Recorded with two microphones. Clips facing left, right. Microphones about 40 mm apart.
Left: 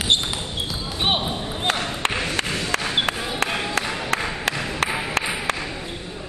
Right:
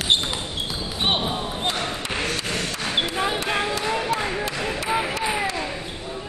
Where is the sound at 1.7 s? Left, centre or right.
Left.